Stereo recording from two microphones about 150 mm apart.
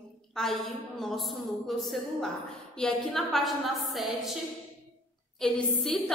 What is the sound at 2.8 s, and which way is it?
A woman's voice, centre (ahead or behind).